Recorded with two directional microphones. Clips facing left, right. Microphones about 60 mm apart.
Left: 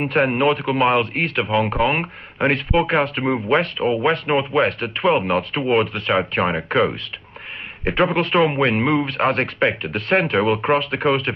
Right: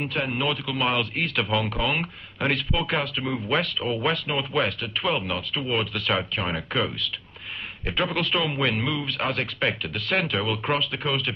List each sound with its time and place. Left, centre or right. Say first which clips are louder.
0.0 s a man's voice: left 9 dB; left